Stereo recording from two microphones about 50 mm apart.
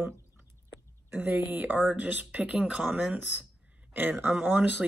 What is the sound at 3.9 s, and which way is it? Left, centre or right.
Speech, right.